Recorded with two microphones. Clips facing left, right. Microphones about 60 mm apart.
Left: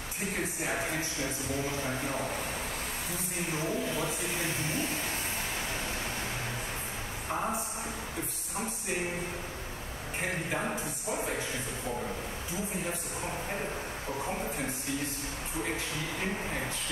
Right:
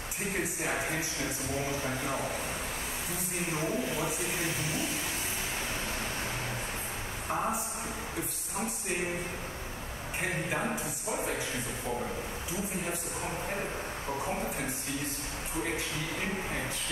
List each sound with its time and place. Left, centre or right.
0.7 s speech: centre
3.5 s speech: centre
4.6 s speech: left
7.3 s speech: centre
10.5 s speech: centre